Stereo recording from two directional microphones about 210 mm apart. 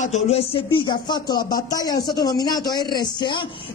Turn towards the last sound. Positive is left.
turn(degrees=20)  # may be behind; listen again after turning